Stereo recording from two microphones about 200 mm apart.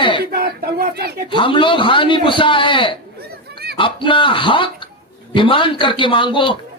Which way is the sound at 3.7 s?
25° left (ahead or behind).